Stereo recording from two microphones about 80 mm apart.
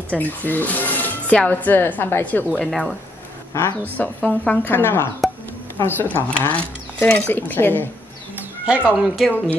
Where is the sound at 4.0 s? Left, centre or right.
Centre.